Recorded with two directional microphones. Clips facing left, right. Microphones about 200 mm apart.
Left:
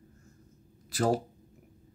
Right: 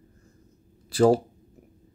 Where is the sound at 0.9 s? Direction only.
30° right (ahead or behind).